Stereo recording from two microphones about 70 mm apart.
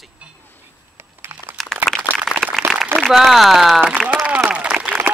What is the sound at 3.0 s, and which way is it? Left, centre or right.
Speech, centre.